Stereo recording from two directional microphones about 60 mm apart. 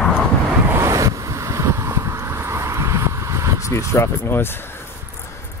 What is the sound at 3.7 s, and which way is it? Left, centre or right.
Speech, left.